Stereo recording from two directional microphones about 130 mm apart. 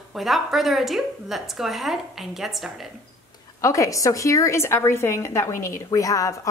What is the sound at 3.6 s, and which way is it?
A woman's voice, 25° left (ahead or behind).